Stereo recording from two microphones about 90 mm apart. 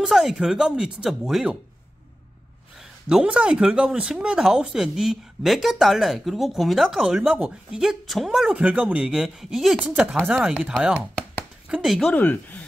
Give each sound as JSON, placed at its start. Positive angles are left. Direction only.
{"t": 0.0, "sound": "speech", "side_deg": -5}
{"t": 2.8, "sound": "speech", "side_deg": -10}
{"t": 8.5, "sound": "speech", "side_deg": -15}
{"t": 11.7, "sound": "speech", "side_deg": -5}
{"t": 12.1, "sound": "speech", "side_deg": 20}